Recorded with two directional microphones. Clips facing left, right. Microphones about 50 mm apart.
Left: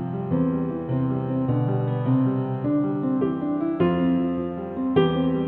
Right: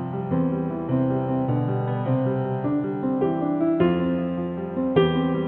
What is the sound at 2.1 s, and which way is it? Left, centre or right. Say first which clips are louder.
Music: left 2 dB; centre.